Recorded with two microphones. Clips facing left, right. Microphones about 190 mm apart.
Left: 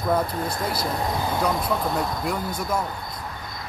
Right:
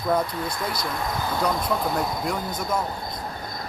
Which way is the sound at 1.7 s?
5° right (ahead or behind).